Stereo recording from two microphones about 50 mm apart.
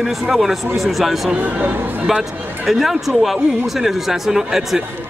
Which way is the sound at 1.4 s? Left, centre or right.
Right.